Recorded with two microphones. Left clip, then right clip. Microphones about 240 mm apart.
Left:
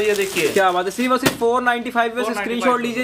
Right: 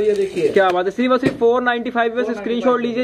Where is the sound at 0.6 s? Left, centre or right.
Centre.